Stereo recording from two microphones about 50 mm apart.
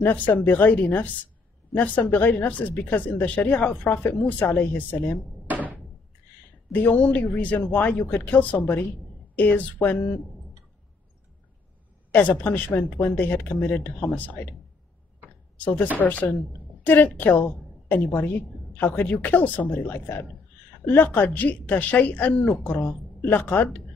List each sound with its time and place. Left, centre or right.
0.3 s a woman's voice: left
5.5 s door: right
6.7 s a woman's voice: left
12.1 s a woman's voice: left
15.2 s a sound: left
16.0 s a woman's voice: left